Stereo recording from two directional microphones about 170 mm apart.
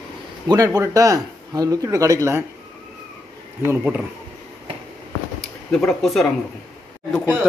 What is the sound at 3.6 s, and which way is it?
Speech, 10° right (ahead or behind).